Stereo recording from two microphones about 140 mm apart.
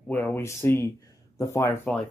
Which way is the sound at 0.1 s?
15° left (ahead or behind).